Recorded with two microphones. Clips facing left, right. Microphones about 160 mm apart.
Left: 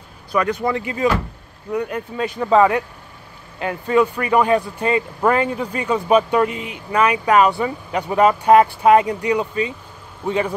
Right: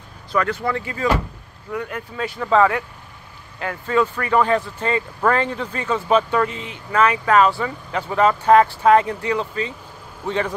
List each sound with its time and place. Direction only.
0.3 s speech: 15° left (ahead or behind)